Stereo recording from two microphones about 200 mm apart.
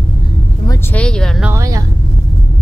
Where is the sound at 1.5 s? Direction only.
15° right (ahead or behind).